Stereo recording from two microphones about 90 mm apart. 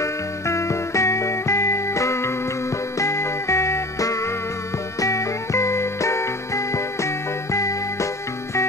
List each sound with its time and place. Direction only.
0.0 s music: 35° left (ahead or behind)